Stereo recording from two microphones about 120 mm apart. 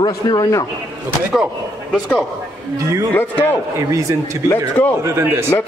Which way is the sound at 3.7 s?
25° right (ahead or behind).